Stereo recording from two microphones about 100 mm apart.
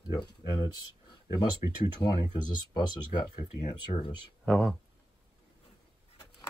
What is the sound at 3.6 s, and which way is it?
Speech, 90° left.